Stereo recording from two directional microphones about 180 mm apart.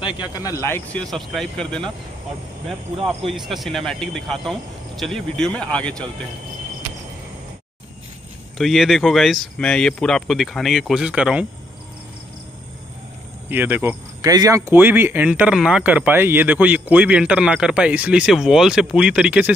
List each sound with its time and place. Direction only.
0.0 s speech: 20° left (ahead or behind)
1.1 s speech: centre (ahead or behind)
3.3 s speech: centre (ahead or behind)
8.5 s speech: centre (ahead or behind)
13.5 s speech: 10° right (ahead or behind)